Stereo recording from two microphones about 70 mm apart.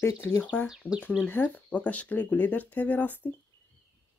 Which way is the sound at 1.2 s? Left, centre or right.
Left.